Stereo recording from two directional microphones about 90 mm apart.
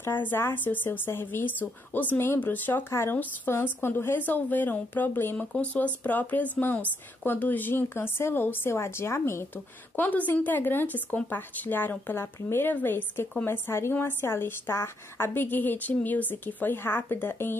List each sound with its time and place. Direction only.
0.0 s speech: 25° left (ahead or behind)